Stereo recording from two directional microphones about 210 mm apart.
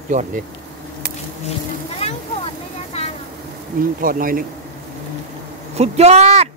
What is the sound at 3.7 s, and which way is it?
Speech, 40° right (ahead or behind).